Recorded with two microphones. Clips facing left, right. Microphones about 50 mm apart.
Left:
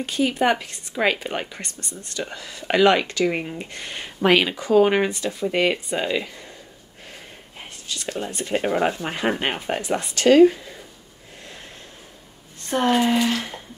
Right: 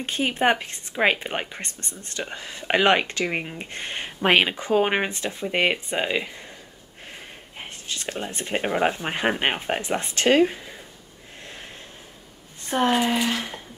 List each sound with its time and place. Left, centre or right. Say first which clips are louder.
0.0 s speech: left 1 dB; right
3.3 s speech: left 4 dB; centre
3.7 s speech: right 2 dB; right
7.5 s speech: even; right
12.6 s speech: left 2 dB; centre